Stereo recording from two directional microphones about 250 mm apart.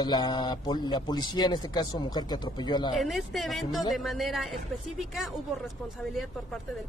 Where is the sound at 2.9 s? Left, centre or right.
Centre.